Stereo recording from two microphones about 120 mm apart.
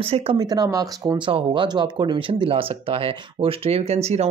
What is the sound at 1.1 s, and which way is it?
Speech, 45° right (ahead or behind).